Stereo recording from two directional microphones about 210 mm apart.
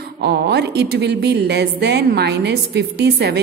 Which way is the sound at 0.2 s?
50° right (ahead or behind).